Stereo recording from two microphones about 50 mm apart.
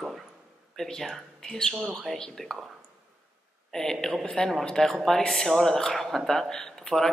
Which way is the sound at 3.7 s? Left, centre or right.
Centre.